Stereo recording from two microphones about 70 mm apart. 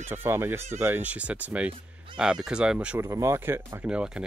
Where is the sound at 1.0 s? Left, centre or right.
Centre.